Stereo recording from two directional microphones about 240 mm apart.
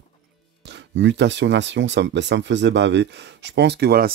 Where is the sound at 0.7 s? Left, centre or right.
Right.